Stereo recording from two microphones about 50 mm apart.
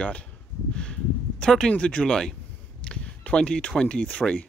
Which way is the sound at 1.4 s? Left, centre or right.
Centre.